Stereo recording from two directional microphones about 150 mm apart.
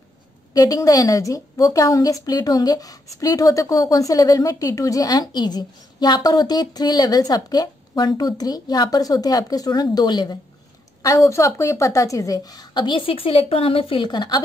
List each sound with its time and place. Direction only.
0.5 s a woman's voice: 25° left (ahead or behind)